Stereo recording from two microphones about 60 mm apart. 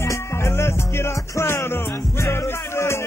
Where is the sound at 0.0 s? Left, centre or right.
Left.